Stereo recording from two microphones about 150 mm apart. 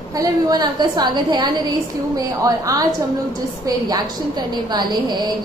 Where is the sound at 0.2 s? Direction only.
25° right (ahead or behind).